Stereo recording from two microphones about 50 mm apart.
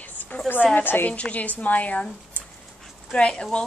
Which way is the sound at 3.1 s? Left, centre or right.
Centre.